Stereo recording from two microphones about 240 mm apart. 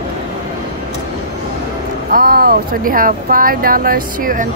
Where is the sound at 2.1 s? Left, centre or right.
Right.